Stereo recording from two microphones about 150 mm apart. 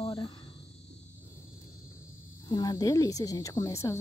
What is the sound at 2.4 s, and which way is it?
Speech, 25° left (ahead or behind).